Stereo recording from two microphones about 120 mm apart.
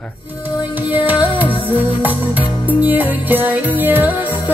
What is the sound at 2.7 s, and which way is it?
Music, 15° right (ahead or behind).